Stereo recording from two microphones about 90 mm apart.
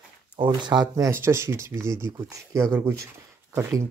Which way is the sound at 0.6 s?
55° right (ahead or behind).